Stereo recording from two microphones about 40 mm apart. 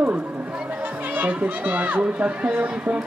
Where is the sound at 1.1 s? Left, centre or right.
Right.